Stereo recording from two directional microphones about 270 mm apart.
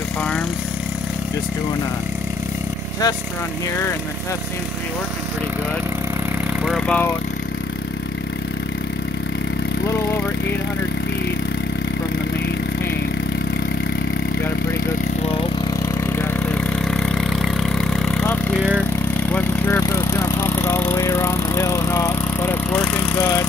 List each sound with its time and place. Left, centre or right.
6.6 s speech: centre
16.2 s vehicle: centre
23.1 s speech: centre